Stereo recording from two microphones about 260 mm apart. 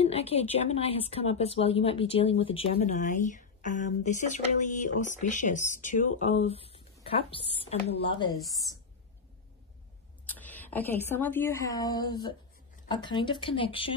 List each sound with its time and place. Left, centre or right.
0.0 s a woman's voice: left
10.2 s a woman's voice: centre